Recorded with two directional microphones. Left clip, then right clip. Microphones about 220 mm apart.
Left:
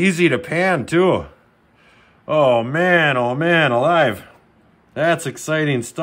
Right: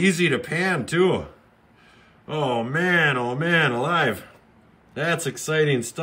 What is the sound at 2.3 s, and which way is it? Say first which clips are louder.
Speech: left 9 dB; 25° left (ahead or behind).